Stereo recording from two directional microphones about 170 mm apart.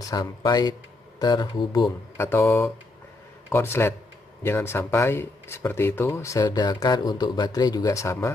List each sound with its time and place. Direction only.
0.0 s speech: 20° left (ahead or behind)